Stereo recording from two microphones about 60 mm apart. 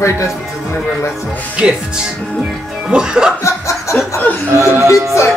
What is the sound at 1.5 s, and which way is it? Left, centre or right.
A man's voice, centre.